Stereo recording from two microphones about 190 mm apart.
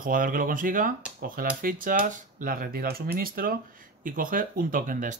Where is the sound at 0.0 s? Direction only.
45° right (ahead or behind).